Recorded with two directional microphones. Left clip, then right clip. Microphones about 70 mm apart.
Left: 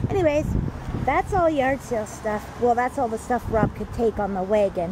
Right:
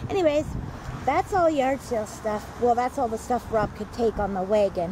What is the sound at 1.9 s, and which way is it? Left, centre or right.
Speech, centre.